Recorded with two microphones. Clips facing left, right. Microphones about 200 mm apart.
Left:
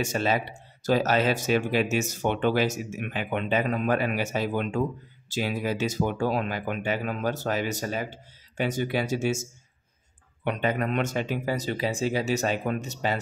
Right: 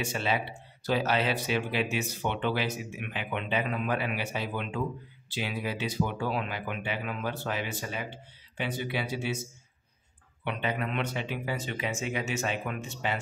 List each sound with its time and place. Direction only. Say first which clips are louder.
0.0 s speech: left 4 dB; 40° left (ahead or behind)